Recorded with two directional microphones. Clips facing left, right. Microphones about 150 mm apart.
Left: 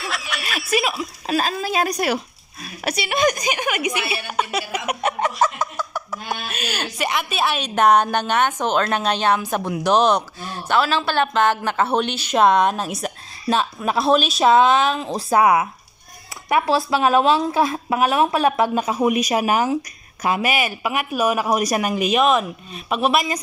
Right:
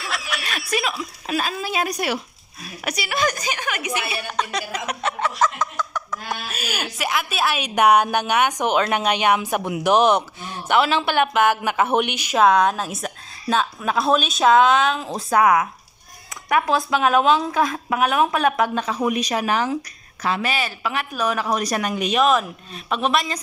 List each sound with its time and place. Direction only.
0.0 s snicker: centre (ahead or behind)
1.2 s speech: 35° left (ahead or behind)
2.8 s speech: 25° left (ahead or behind); by 6.0 s 10° left (ahead or behind)
6.4 s a woman's voice: 5° right (ahead or behind)
12.4 s a woman's voice: centre (ahead or behind)